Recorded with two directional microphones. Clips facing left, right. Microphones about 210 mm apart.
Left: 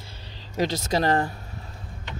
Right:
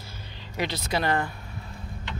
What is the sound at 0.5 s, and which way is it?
Speech, 45° left (ahead or behind).